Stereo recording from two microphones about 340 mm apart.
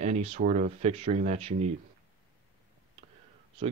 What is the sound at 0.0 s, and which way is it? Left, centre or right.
Speech, centre.